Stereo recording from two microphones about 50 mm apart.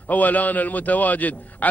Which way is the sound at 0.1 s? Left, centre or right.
Left.